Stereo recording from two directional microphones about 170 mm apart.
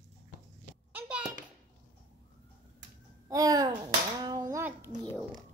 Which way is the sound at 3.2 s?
20° right (ahead or behind).